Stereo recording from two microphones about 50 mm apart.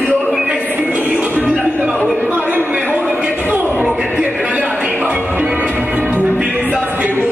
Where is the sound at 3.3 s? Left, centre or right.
Right.